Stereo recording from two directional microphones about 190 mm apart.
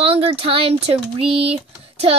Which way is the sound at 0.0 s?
30° right (ahead or behind).